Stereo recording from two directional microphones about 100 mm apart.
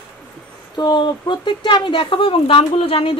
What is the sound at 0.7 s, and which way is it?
A woman's voice, 50° left (ahead or behind).